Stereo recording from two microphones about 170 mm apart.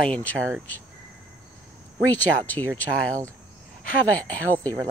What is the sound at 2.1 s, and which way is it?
Speech, 10° left (ahead or behind).